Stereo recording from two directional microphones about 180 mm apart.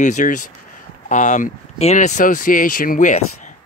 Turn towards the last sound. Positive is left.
turn(degrees=50)  # may be behind; listen again after turning